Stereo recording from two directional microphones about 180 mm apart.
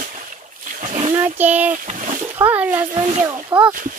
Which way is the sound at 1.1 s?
10° right (ahead or behind).